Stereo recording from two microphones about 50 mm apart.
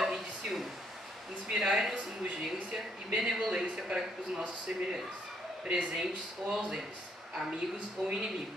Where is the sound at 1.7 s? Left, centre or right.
Centre.